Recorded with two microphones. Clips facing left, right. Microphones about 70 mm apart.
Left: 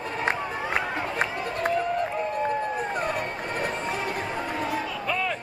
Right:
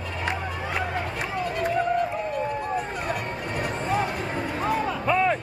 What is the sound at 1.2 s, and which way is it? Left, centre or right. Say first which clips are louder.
Run: even; left.